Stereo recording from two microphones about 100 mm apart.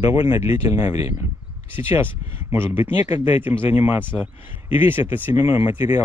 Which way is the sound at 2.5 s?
20° right (ahead or behind).